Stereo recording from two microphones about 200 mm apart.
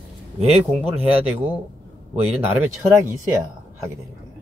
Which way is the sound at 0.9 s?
30° right (ahead or behind).